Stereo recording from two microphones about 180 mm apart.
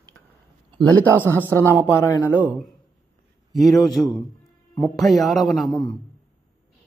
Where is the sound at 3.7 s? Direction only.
20° left (ahead or behind).